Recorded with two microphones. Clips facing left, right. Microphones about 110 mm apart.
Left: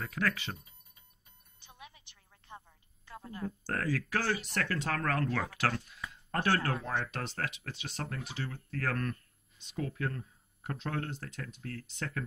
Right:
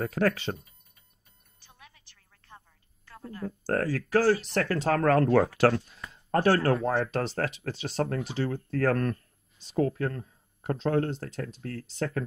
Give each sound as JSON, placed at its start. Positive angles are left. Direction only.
{"t": 0.0, "sound": "speech", "side_deg": -35}
{"t": 1.6, "sound": "music", "side_deg": 20}
{"t": 3.1, "sound": "a sound", "side_deg": 15}
{"t": 3.6, "sound": "speech", "side_deg": -35}